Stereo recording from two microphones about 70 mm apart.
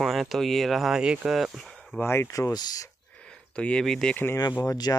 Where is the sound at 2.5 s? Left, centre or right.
Left.